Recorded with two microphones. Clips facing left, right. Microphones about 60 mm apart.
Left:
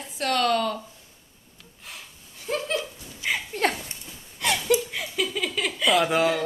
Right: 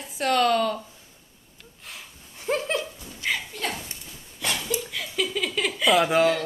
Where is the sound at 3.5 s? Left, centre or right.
Left.